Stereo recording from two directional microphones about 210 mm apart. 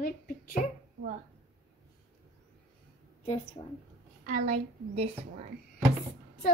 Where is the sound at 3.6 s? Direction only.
25° left (ahead or behind).